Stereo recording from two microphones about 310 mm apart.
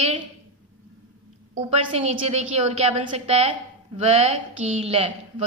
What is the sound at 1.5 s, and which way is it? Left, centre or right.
A woman's voice, centre.